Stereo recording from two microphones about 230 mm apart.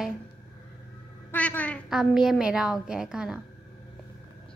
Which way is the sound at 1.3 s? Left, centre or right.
Centre.